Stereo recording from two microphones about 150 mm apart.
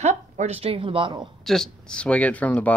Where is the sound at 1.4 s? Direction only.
Centre (ahead or behind).